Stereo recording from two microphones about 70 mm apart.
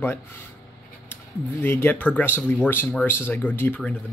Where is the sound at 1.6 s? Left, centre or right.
Left.